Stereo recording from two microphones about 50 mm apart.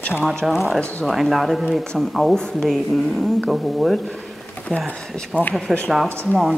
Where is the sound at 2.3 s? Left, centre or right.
Centre.